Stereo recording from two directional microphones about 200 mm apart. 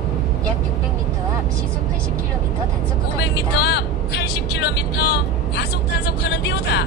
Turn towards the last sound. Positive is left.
turn(degrees=60)  # may be behind; listen again after turning